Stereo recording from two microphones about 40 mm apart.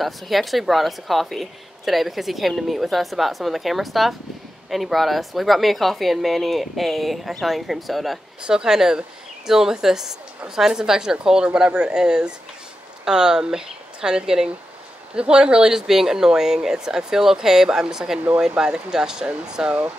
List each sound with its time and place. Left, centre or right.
0.0 s a woman's voice: centre
8.4 s speech: right
15.9 s speech: centre